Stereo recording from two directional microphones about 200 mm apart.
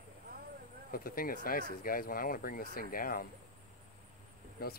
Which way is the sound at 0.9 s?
45° left (ahead or behind).